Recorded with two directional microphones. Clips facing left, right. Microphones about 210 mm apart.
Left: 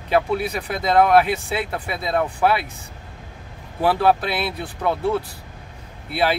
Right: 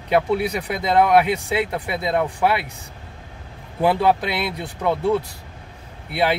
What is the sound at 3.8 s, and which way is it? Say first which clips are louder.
Speech: even; 15° right (ahead or behind).